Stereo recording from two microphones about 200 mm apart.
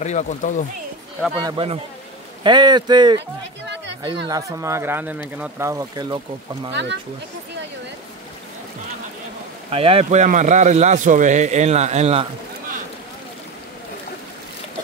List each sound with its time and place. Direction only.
0.0 s speech: 35° left (ahead or behind)
1.3 s speech: 25° right (ahead or behind)
3.6 s a sound: 60° right (ahead or behind)
4.3 s speech: 15° right (ahead or behind)
6.7 s speech: 60° right (ahead or behind)
9.7 s a man's voice: 30° right (ahead or behind)